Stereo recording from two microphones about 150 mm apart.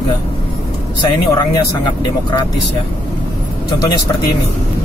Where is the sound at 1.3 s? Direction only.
30° left (ahead or behind).